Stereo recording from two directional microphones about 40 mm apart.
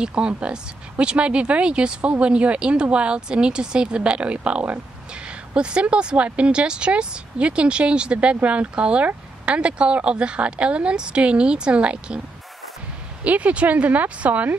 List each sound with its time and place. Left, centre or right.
0.0 s speech: right
13.2 s speech: right